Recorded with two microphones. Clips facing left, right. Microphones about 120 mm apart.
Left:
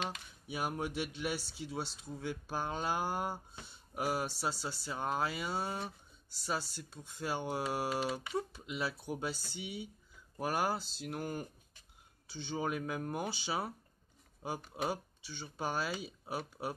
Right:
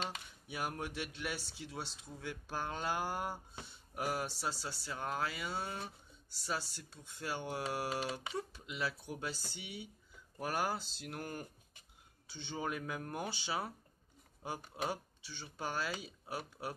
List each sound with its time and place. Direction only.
0.5 s speech: 15° left (ahead or behind)